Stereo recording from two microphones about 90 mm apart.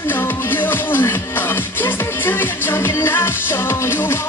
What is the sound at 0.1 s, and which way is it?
Music, 25° left (ahead or behind).